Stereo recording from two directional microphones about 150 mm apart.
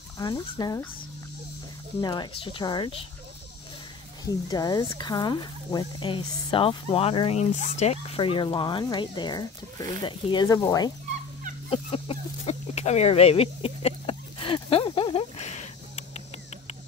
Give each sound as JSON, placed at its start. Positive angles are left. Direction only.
{"t": 0.2, "sound": "fowl", "side_deg": 25}
{"t": 2.0, "sound": "speech", "side_deg": 30}
{"t": 4.3, "sound": "speech", "side_deg": 25}
{"t": 11.7, "sound": "a sound", "side_deg": 40}